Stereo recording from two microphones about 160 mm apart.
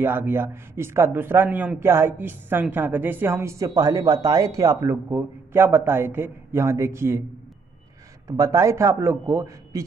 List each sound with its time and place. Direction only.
0.0 s speech: 15° right (ahead or behind)
8.3 s a man's voice: 20° right (ahead or behind)